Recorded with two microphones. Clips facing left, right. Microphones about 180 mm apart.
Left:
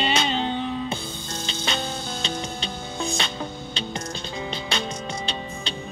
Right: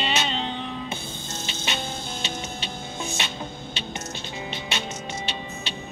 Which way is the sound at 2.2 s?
30° left (ahead or behind).